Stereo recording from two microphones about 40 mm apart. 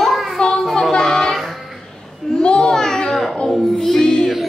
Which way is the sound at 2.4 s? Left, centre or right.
Left.